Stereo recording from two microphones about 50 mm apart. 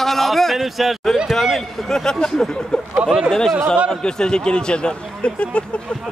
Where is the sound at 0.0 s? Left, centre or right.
Centre.